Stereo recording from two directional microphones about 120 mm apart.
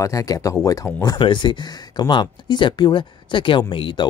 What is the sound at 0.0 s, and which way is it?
Speech, 30° left (ahead or behind).